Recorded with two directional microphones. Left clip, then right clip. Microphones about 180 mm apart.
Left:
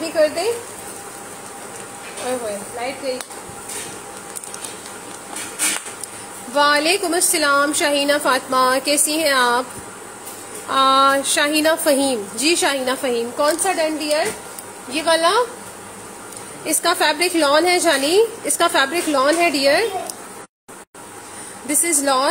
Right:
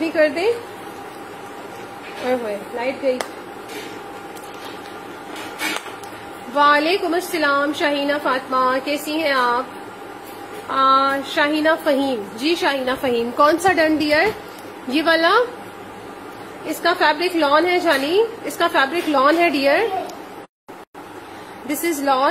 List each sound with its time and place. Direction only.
0.0 s speech: 15° right (ahead or behind)
6.5 s a woman's voice: 10° left (ahead or behind)
10.7 s a woman's voice: 20° left (ahead or behind)
12.9 s speech: centre (ahead or behind)
13.4 s a woman's voice: 25° right (ahead or behind)
16.6 s a woman's voice: 15° left (ahead or behind); by 19.9 s centre (ahead or behind)
21.6 s speech: 5° left (ahead or behind)